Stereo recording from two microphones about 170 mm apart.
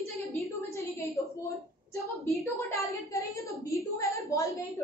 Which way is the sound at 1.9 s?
20° left (ahead or behind).